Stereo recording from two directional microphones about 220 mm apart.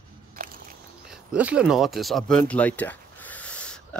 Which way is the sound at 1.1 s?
5° right (ahead or behind).